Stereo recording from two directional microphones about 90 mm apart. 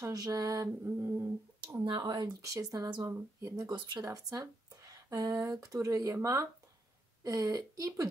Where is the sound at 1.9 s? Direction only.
55° right (ahead or behind).